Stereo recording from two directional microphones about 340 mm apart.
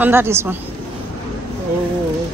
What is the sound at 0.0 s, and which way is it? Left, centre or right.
Speech, centre.